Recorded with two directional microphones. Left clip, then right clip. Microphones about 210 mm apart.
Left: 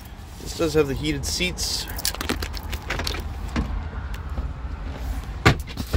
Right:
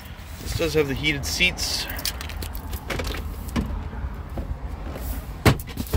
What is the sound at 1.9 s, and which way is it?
Whispering, 50° left (ahead or behind).